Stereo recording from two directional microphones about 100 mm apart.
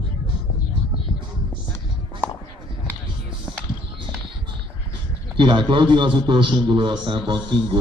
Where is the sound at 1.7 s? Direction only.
20° left (ahead or behind).